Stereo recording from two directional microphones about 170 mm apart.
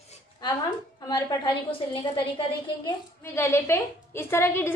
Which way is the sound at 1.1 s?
25° left (ahead or behind).